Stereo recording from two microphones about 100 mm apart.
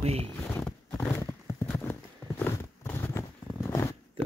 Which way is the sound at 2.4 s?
25° left (ahead or behind).